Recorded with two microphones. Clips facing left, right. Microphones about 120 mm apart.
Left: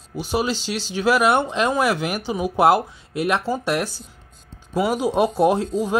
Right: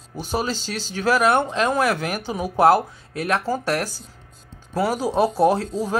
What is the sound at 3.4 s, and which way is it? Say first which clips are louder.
Speech: even; 5° right (ahead or behind).